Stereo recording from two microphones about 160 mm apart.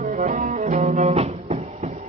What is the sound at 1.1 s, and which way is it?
Music, 40° right (ahead or behind).